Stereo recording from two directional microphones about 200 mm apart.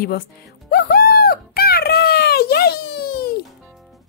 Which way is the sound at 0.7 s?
50° left (ahead or behind).